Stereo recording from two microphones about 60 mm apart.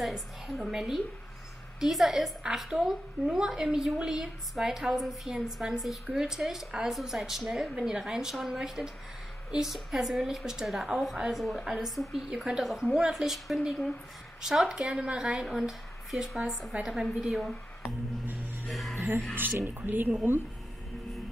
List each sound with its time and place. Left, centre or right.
0.0 s a woman's voice: centre
14.4 s a woman's voice: centre
18.2 s a sound: right
18.7 s music: centre
19.3 s speech: right